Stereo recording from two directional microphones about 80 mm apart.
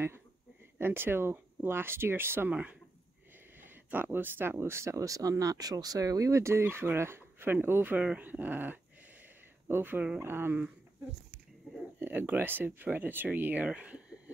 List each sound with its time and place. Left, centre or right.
0.7 s speech: right
2.5 s speech: centre
12.0 s speech: right
13.7 s a sound: centre